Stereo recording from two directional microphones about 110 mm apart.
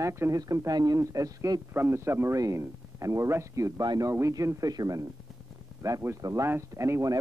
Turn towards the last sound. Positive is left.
turn(degrees=-30)  # may be behind; listen again after turning